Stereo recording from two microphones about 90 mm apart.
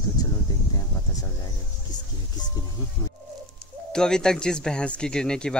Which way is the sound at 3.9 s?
5° left (ahead or behind).